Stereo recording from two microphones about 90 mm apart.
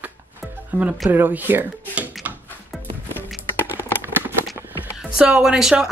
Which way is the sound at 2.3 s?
20° right (ahead or behind).